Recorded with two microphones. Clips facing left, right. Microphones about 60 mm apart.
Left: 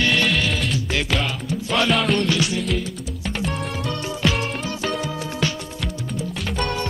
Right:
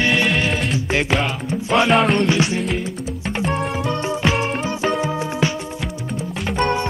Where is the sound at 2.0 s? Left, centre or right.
Centre.